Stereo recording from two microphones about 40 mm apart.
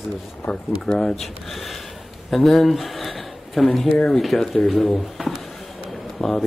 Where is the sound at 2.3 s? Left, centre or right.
Centre.